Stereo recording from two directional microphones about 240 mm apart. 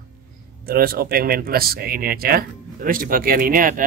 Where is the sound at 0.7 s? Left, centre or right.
Right.